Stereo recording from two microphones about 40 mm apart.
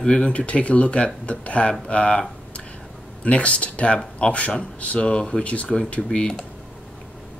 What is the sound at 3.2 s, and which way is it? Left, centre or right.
Speech, left.